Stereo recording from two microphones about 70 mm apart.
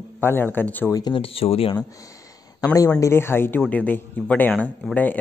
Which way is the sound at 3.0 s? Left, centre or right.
Left.